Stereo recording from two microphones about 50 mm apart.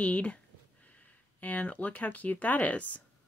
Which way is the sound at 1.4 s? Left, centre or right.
Left.